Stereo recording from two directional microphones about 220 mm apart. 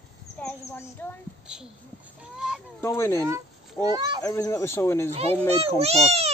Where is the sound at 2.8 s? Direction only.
10° left (ahead or behind).